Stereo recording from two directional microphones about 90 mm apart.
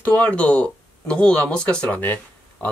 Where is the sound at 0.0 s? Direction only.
15° left (ahead or behind).